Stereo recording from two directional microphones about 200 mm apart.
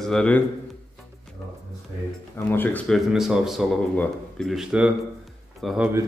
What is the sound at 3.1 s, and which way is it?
Speech, centre (ahead or behind).